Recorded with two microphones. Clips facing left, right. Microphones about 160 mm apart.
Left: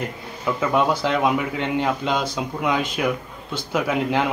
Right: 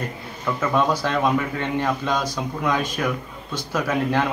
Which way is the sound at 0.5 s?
10° left (ahead or behind).